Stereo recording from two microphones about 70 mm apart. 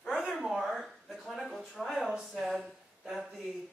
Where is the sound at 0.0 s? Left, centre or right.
Centre.